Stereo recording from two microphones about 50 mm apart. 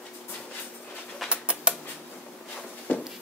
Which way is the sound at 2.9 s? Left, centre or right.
Left.